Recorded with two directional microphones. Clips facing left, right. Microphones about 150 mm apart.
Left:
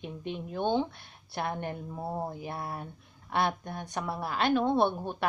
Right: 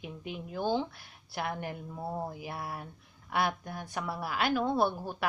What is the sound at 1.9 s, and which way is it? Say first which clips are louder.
Speech: even; 25° left (ahead or behind).